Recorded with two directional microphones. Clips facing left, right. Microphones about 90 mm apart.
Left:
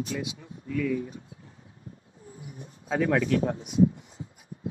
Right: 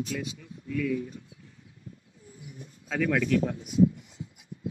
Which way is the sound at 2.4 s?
35° left (ahead or behind).